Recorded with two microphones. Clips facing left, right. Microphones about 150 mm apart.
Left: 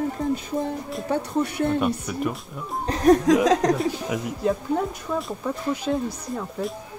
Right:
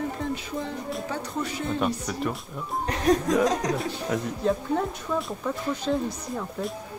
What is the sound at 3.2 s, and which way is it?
Speech, 90° left.